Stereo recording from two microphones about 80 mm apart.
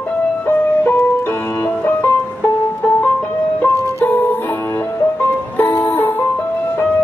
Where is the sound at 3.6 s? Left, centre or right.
Left.